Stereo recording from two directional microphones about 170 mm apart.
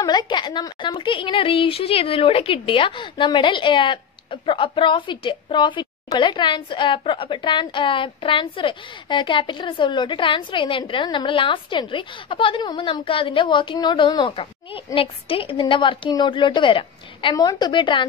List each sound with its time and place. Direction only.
0.0 s a woman's voice: 25° left (ahead or behind)